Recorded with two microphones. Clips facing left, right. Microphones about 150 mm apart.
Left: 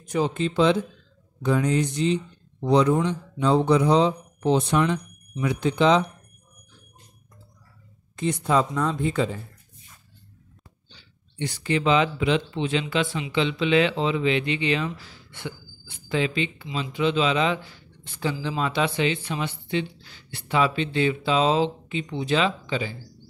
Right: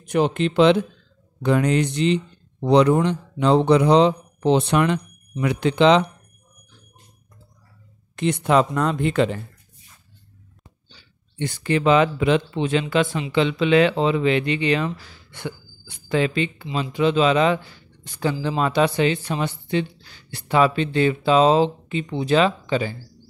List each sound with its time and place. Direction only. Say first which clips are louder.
0.0 s speech: right 4 dB; 65° right (ahead or behind)
8.2 s speech: right 4 dB; 70° right (ahead or behind)
11.3 s speech: right 3 dB; 55° right (ahead or behind)
16.1 s speech: right 4 dB; 50° right (ahead or behind)